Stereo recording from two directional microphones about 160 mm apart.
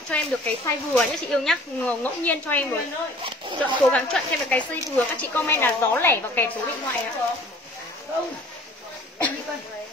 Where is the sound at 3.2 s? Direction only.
30° right (ahead or behind).